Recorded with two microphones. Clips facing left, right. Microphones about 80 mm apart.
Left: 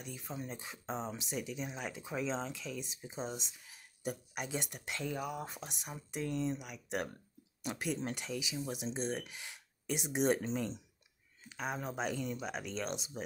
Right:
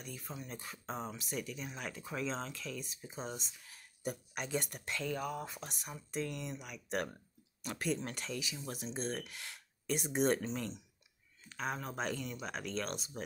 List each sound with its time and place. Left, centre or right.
0.0 s speech: left
6.6 s speech: centre
11.4 s speech: centre